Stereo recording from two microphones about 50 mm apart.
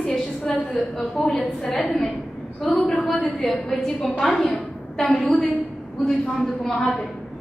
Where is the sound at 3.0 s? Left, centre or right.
Centre.